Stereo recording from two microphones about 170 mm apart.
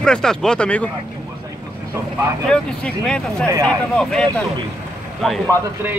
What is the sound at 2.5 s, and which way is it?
Speech, 5° left (ahead or behind).